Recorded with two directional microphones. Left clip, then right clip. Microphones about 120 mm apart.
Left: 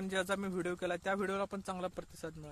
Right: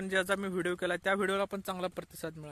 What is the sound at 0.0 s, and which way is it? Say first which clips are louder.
Speech: right 5 dB; 20° right (ahead or behind).